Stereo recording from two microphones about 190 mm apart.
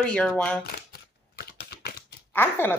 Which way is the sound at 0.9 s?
55° left (ahead or behind).